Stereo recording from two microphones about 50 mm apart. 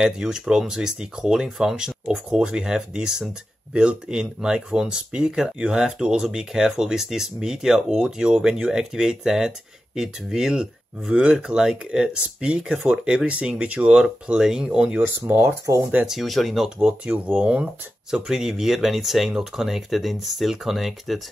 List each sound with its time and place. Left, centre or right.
0.0 s speech: centre
15.3 s speech: right
16.1 s speech: centre
16.8 s speech: right; by 21.2 s centre